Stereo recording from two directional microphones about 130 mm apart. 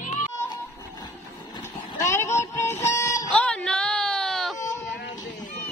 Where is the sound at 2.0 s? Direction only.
20° left (ahead or behind).